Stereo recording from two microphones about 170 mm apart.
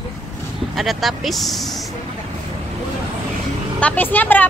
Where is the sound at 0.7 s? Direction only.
Centre (ahead or behind).